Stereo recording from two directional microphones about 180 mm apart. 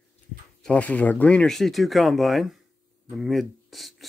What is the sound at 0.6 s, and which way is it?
Speech, 5° left (ahead or behind).